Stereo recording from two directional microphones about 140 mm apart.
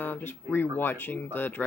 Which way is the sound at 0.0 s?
15° left (ahead or behind).